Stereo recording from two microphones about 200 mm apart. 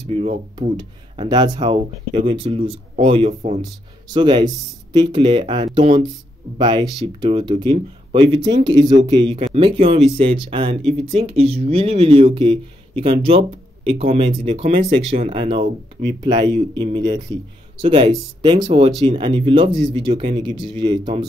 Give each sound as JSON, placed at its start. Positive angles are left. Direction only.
{"t": 0.1, "sound": "speech", "side_deg": -30}